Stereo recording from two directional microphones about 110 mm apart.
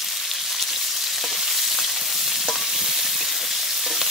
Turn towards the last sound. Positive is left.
turn(degrees=0)  # may be behind; listen again after turning